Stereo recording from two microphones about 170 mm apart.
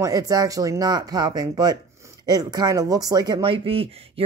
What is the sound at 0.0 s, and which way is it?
Speech, 20° right (ahead or behind).